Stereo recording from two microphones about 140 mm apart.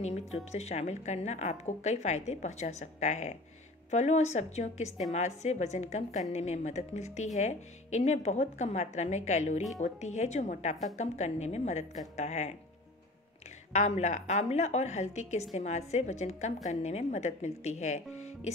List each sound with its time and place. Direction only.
0.5 s a woman's voice: 50° left (ahead or behind)
13.7 s speech: 55° left (ahead or behind)